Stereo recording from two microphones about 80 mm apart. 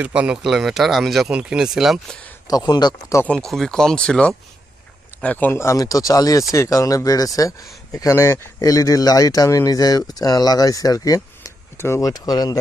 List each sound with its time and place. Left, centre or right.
0.0 s speech: centre
0.4 s speech: centre
1.3 s speech: centre
2.4 s speech: left
3.3 s speech: centre
5.6 s speech: left
12.0 s speech: left